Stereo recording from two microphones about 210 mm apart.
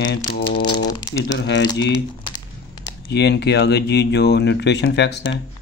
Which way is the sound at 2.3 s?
20° left (ahead or behind).